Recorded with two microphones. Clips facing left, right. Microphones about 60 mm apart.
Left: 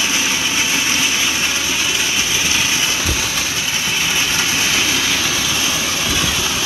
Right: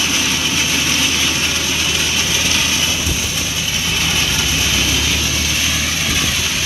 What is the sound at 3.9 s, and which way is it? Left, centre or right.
Vehicle, centre.